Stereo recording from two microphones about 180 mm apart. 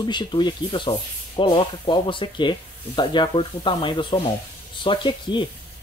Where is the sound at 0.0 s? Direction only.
25° left (ahead or behind).